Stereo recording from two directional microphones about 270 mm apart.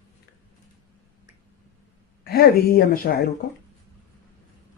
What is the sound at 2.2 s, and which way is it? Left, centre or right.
A woman's voice, left.